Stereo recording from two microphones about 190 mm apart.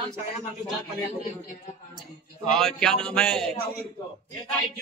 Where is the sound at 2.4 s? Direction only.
Centre (ahead or behind).